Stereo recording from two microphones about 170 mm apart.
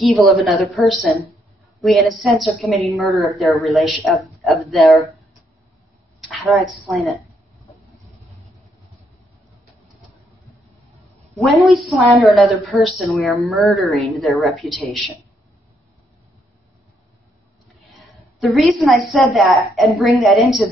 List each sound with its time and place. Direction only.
0.0 s speech: centre (ahead or behind)
6.2 s speech: centre (ahead or behind)
11.3 s speech: centre (ahead or behind)
17.6 s a woman's voice: centre (ahead or behind)